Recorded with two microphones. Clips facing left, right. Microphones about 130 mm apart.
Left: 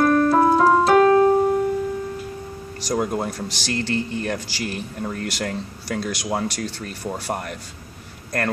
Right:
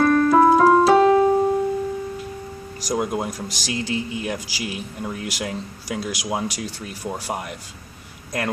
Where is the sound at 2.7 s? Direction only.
5° right (ahead or behind).